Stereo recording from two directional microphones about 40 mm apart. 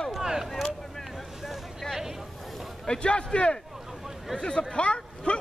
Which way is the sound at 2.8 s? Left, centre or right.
Left.